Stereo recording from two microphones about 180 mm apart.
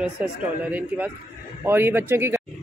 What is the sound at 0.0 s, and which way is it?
Speech, 5° right (ahead or behind).